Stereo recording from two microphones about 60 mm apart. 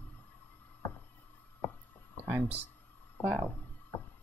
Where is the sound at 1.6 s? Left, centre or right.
Left.